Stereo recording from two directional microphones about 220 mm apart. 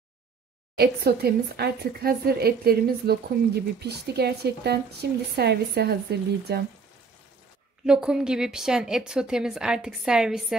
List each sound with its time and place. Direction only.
0.7 s a woman's voice: 45° right (ahead or behind)
7.8 s a woman's voice: 5° right (ahead or behind)